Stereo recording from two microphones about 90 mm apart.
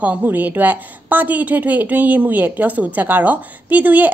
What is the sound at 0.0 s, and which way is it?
A woman's voice, 20° right (ahead or behind).